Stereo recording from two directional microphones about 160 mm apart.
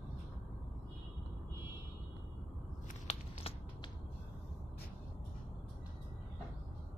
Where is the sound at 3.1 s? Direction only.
45° left (ahead or behind).